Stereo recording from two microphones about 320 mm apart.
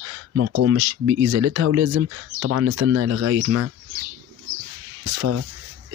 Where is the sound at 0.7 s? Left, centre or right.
Right.